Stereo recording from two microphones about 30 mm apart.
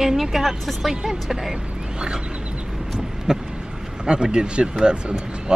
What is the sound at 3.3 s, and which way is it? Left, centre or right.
Vehicle, centre.